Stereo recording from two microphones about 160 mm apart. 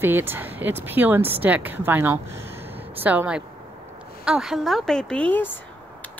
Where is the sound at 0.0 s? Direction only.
15° right (ahead or behind); by 5.5 s 10° left (ahead or behind).